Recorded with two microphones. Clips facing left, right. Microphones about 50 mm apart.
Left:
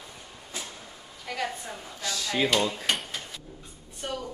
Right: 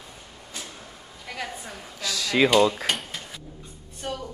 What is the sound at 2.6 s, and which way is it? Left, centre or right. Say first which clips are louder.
Dishes: right 8 dB; right.